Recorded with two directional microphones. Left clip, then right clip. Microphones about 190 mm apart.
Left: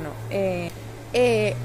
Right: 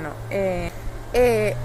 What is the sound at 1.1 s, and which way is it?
Speech, 10° right (ahead or behind).